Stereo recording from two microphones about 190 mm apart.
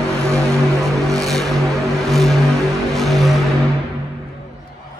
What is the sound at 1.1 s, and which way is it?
Vehicle, centre (ahead or behind).